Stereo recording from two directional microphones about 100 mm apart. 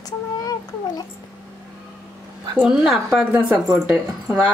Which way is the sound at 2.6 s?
5° right (ahead or behind).